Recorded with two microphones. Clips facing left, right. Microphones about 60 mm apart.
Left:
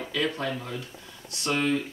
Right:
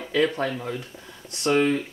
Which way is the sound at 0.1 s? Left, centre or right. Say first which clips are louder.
Right 6 dB; right.